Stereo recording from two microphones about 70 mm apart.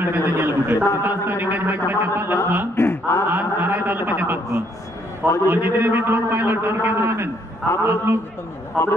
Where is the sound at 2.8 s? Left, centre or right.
Left.